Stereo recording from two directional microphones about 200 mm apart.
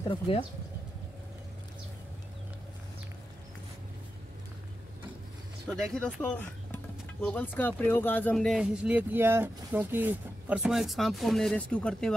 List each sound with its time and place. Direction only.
0.3 s speech: 25° left (ahead or behind)
5.7 s speech: centre (ahead or behind)